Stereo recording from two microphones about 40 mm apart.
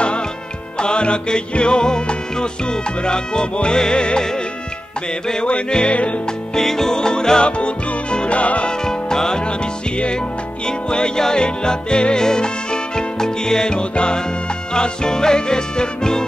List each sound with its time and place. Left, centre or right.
0.7 s music: left
5.5 s music: left
6.5 s music: centre; by 8.7 s left
8.8 s music: centre